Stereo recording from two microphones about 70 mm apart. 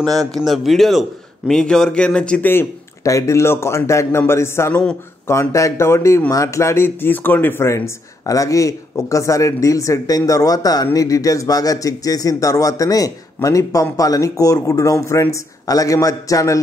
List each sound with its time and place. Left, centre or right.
0.0 s speech: centre
2.4 s speech: left
3.0 s speech: left